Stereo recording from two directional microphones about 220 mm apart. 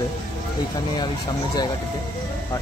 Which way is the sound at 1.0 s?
20° left (ahead or behind).